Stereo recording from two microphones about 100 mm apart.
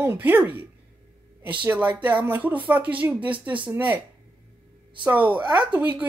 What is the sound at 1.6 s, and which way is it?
Speech, 15° right (ahead or behind).